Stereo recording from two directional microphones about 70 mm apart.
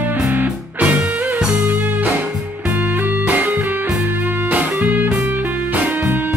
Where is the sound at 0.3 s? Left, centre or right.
Right.